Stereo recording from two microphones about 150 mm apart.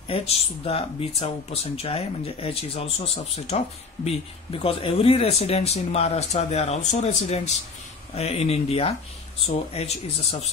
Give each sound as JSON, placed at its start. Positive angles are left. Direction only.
{"t": 0.1, "sound": "speech", "side_deg": 40}